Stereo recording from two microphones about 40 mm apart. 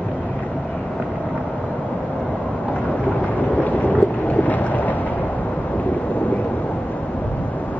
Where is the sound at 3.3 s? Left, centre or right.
Left.